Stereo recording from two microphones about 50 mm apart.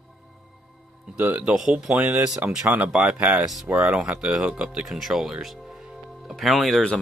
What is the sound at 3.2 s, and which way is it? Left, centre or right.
Speech, right.